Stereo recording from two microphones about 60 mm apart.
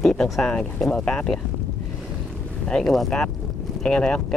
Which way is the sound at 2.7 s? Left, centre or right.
Centre.